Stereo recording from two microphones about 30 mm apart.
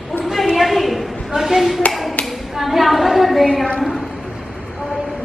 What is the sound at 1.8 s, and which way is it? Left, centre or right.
Tap, left.